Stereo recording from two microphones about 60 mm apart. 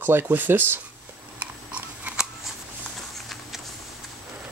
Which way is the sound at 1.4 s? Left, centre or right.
Right.